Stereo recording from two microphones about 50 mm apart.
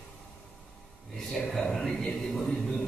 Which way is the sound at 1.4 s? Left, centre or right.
Centre.